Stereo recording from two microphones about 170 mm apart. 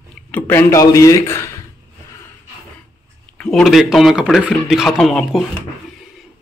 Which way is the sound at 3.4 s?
5° left (ahead or behind).